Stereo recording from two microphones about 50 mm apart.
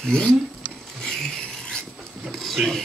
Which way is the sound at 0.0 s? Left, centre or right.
Centre.